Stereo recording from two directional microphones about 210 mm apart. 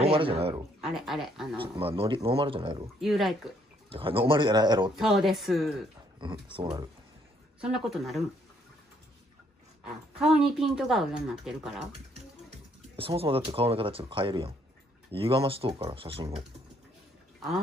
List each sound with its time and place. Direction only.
0.0 s speech: 25° right (ahead or behind)
0.7 s speech: centre (ahead or behind)
1.6 s speech: 25° right (ahead or behind)
3.0 s speech: centre (ahead or behind)
3.9 s speech: 25° right (ahead or behind)
4.9 s speech: centre (ahead or behind)
6.1 s speech: 20° right (ahead or behind)
7.6 s speech: centre (ahead or behind)
10.1 s speech: 5° right (ahead or behind)
12.9 s speech: 25° right (ahead or behind)